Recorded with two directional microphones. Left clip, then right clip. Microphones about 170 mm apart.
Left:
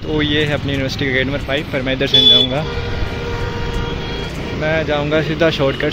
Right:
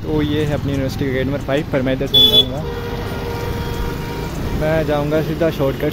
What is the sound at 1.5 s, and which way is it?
Speech, 30° right (ahead or behind).